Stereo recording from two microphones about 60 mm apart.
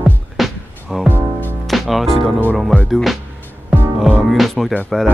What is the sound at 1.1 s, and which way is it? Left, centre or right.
Music, left.